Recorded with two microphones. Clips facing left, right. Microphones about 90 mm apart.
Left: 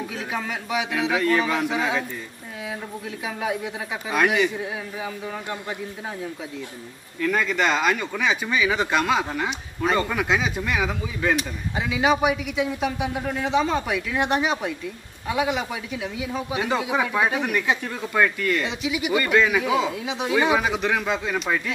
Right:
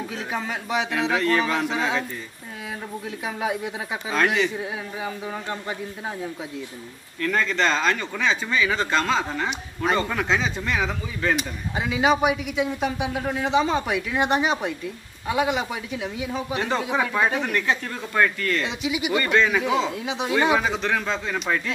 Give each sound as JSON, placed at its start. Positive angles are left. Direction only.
{"t": 0.1, "sound": "a man's voice", "side_deg": 0}
{"t": 3.3, "sound": "a man's voice", "side_deg": 0}
{"t": 4.1, "sound": "speech", "side_deg": 10}
{"t": 4.6, "sound": "a man's voice", "side_deg": 0}
{"t": 7.2, "sound": "a man's voice", "side_deg": 10}